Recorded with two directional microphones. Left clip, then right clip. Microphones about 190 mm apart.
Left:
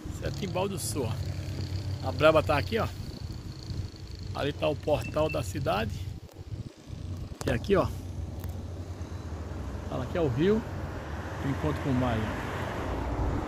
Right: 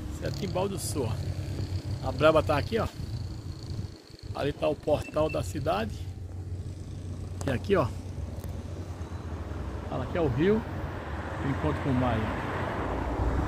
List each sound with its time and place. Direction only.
0.4 s speech: 10° left (ahead or behind)
4.3 s speech: 15° left (ahead or behind)
7.4 s speech: 35° left (ahead or behind)
9.9 s a sound: 45° left (ahead or behind)